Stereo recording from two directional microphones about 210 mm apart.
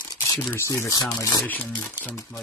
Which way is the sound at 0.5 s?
15° left (ahead or behind).